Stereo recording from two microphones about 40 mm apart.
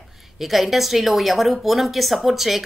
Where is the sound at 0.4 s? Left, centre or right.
Centre.